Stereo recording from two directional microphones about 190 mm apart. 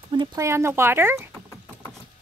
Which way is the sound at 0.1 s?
25° right (ahead or behind).